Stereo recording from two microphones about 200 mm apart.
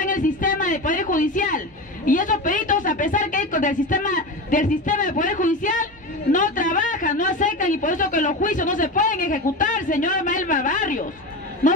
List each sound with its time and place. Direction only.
0.0 s a woman's voice: 40° left (ahead or behind)